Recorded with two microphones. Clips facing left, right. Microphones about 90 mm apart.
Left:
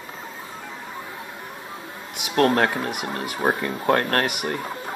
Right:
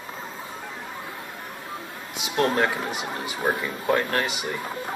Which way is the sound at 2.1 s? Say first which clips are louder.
Left 4 dB; 55° left (ahead or behind).